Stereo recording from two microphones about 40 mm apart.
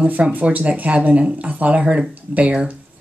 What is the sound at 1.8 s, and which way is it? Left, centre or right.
Speech, right.